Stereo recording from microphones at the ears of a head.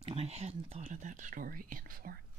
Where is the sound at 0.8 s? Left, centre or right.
Right.